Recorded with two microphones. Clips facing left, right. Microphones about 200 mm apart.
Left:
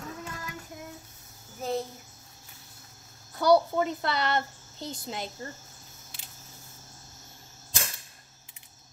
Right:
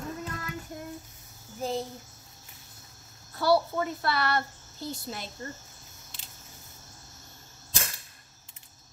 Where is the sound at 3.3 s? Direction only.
20° left (ahead or behind).